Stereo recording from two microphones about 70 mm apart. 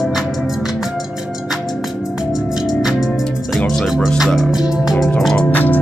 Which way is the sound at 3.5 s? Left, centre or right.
Centre.